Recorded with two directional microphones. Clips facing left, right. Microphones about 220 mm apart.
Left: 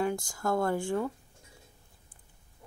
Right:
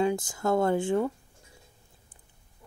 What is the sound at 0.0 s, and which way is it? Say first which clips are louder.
Speech: right 4 dB; 20° right (ahead or behind).